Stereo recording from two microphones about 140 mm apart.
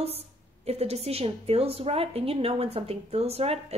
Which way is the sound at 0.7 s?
45° right (ahead or behind).